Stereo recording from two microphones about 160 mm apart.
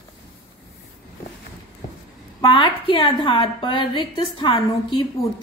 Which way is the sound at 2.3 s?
30° left (ahead or behind).